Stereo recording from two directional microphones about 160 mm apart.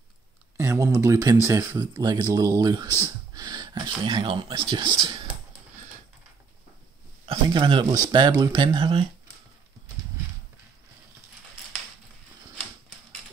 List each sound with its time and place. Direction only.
0.6 s speech: 20° right (ahead or behind)
7.2 s speech: 30° right (ahead or behind)